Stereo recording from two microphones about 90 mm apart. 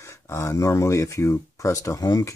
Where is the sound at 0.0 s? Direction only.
30° left (ahead or behind).